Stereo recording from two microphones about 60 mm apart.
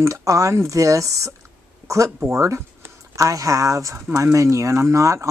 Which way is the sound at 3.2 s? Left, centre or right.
Right.